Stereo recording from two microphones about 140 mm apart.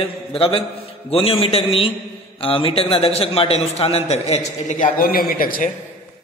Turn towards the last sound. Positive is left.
turn(degrees=90)